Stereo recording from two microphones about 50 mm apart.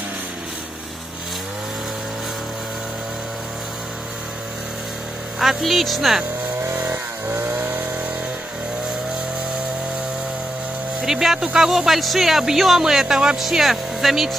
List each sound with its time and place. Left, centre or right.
5.4 s speech: centre
7.4 s chainsaw: right
11.0 s speech: centre